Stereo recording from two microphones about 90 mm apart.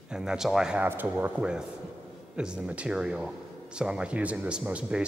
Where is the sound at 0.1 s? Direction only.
5° right (ahead or behind).